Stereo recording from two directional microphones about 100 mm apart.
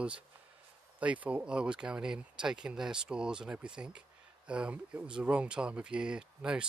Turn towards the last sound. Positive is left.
turn(degrees=-10)  # may be behind; listen again after turning